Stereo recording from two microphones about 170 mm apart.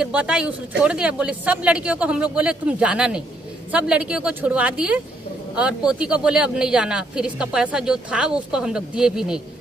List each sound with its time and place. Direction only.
0.0 s speech: 5° right (ahead or behind)